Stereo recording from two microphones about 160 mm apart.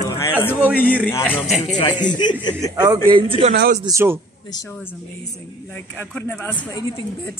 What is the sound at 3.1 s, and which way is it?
Speech, 40° right (ahead or behind).